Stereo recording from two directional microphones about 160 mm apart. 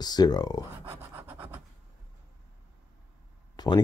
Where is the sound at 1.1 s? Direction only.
10° right (ahead or behind).